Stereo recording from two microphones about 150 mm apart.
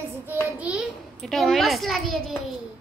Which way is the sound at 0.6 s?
10° right (ahead or behind).